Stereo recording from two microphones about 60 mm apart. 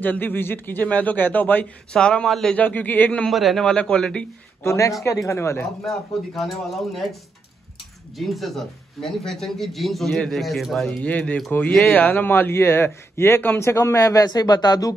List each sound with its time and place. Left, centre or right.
0.0 s a man's voice: left
1.9 s a man's voice: centre
2.5 s a man's voice: left
3.3 s speech: centre
3.6 s a man's voice: centre
4.6 s speech: left
5.9 s speech: centre
8.2 s speech: centre
11.1 s a man's voice: left